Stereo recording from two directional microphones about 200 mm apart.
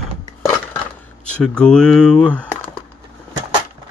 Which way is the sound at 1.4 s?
5° left (ahead or behind).